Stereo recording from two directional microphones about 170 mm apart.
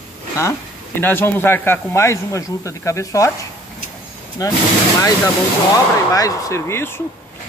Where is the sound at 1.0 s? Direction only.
10° left (ahead or behind).